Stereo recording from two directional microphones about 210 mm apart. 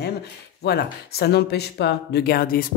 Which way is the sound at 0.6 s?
50° left (ahead or behind).